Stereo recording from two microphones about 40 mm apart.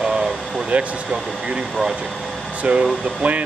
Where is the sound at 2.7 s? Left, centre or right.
Right.